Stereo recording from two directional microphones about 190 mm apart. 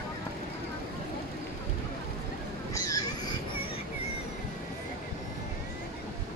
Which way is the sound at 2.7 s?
15° left (ahead or behind).